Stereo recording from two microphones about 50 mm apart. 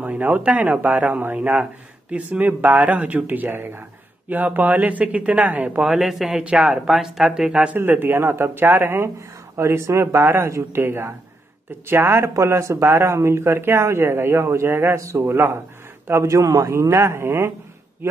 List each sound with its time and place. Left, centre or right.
0.0 s a sound: right
0.4 s speech: right
5.8 s speech: centre
6.4 s speech: centre
6.9 s speech: centre
7.7 s speech: right
9.6 s speech: right
10.2 s speech: right
12.4 s speech: right
15.0 s speech: right
15.2 s speech: right
16.1 s speech: right